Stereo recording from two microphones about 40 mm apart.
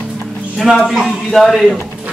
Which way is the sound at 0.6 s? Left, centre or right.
Centre.